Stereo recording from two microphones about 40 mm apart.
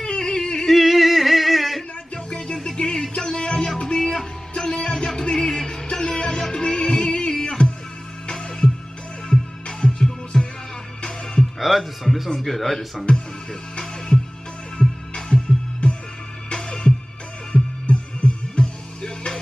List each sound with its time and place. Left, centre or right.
0.0 s a sound: left
0.7 s singing: centre
2.2 s music: centre
11.6 s music: centre
12.4 s a man's voice: centre
13.7 s music: left